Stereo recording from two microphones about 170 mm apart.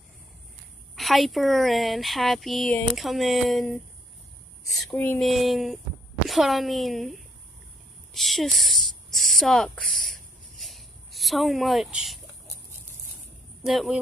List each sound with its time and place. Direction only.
0.9 s speech: centre (ahead or behind)
5.2 s speech: centre (ahead or behind)
8.1 s a sound: centre (ahead or behind)
13.7 s speech: centre (ahead or behind)